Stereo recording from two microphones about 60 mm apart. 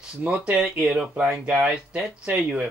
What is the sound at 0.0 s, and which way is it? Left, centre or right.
Speech, centre.